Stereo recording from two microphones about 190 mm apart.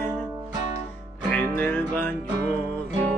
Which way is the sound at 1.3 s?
10° left (ahead or behind).